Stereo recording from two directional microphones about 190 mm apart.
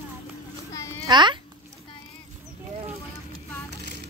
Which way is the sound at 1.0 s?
25° right (ahead or behind).